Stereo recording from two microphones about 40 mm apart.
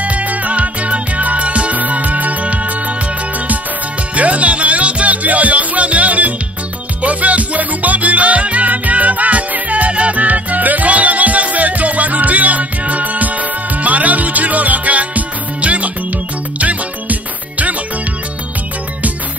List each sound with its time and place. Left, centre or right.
0.0 s music: right
4.1 s music: right